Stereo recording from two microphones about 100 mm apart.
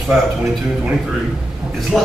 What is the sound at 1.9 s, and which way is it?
Speech, centre (ahead or behind).